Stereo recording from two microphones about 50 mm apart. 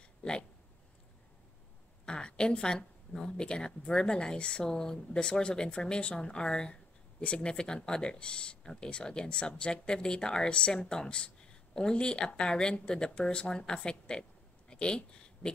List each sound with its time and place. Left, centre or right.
0.2 s speech: centre
2.0 s speech: centre
14.7 s a sound: centre